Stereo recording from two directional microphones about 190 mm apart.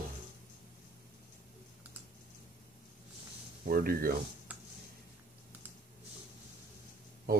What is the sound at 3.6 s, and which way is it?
Speech, 50° right (ahead or behind).